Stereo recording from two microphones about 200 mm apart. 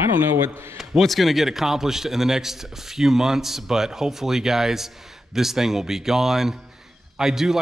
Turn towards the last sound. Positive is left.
turn(degrees=0)  # may be behind; listen again after turning